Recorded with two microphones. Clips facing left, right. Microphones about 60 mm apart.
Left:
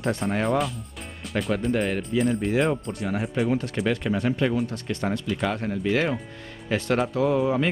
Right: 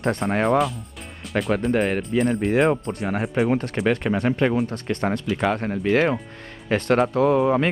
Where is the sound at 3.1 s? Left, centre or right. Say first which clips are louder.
Right 3 dB; right.